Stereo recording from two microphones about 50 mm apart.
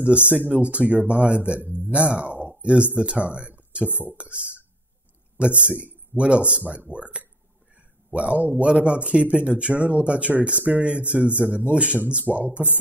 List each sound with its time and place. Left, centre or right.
0.5 s speech: right
2.4 s a sound: right
3.0 s speech: right
5.6 s a man's voice: right